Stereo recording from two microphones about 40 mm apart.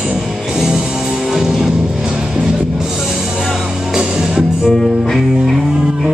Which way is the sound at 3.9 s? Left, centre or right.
Centre.